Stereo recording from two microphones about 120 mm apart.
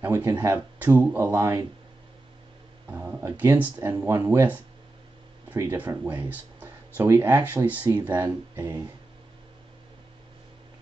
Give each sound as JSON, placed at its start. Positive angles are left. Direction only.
{"t": 0.0, "sound": "speech", "side_deg": -20}
{"t": 2.9, "sound": "speech", "side_deg": -20}
{"t": 5.6, "sound": "speech", "side_deg": -15}